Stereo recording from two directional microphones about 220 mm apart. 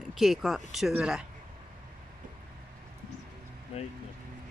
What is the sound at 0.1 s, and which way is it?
Speech, centre (ahead or behind).